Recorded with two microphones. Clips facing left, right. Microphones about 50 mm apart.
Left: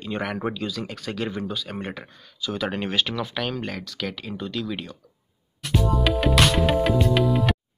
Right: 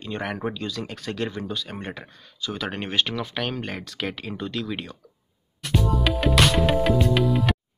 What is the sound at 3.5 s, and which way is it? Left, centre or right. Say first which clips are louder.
Speech: left 1 dB; centre.